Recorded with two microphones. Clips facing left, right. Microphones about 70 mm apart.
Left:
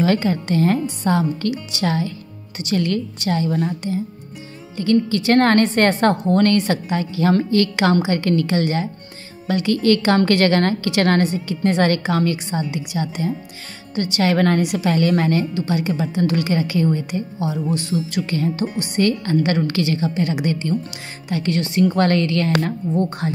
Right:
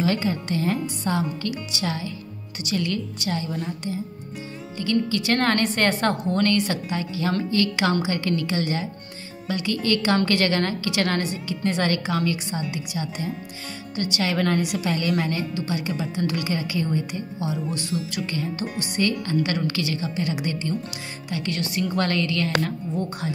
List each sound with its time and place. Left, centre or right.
0.0 s a woman's voice: left
4.7 s a woman's voice: left
13.9 s a woman's voice: left
19.2 s a woman's voice: left
21.3 s a woman's voice: left
21.5 s a woman's voice: left